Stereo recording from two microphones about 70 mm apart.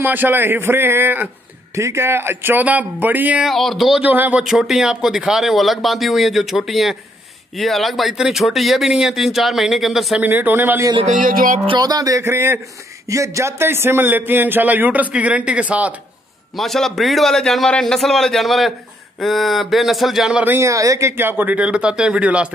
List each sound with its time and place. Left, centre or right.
0.0 s a man's voice: right
1.8 s a man's voice: right
3.4 s speech: centre
4.0 s a man's voice: right
4.4 s speech: centre
10.2 s a man's voice: right
11.8 s a man's voice: right; by 15.9 s centre
16.5 s speech: centre
20.6 s speech: right
21.1 s speech: right